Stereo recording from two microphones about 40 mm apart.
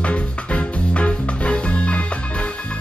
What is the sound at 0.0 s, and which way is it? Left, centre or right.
Music, left.